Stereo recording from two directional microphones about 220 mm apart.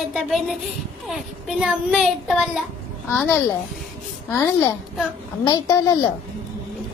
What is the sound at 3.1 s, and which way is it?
A woman's voice, 10° left (ahead or behind).